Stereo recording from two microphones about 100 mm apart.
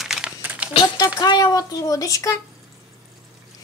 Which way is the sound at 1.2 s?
40° left (ahead or behind).